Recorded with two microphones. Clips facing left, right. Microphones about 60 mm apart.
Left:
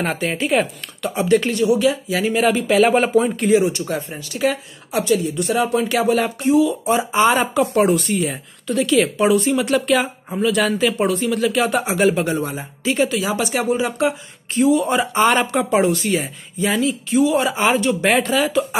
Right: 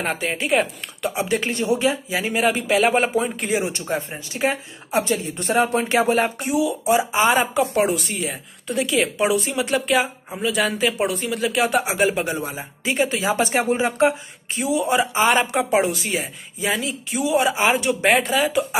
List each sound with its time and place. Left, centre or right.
0.0 s a woman's voice: centre
1.5 s speech: right
2.1 s a woman's voice: centre
3.6 s speech: right
6.5 s a woman's voice: centre
8.6 s a woman's voice: centre
13.1 s speech: right
14.5 s a woman's voice: centre